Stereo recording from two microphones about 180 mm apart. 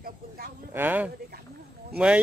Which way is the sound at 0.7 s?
10° right (ahead or behind).